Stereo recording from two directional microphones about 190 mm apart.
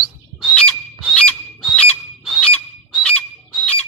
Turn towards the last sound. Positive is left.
turn(degrees=0)  # may be behind; listen again after turning